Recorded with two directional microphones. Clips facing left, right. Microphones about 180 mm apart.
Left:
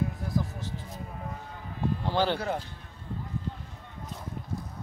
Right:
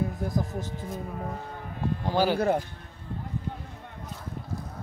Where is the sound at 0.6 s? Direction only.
45° right (ahead or behind).